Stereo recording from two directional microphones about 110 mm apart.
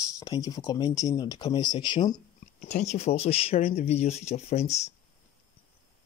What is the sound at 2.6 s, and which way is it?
Speech, 80° left.